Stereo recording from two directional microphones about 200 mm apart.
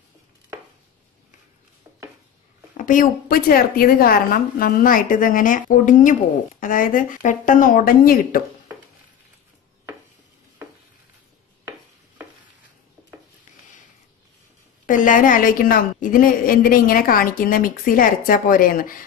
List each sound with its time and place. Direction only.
2.8 s a woman's voice: 40° left (ahead or behind)
14.9 s a woman's voice: 40° left (ahead or behind)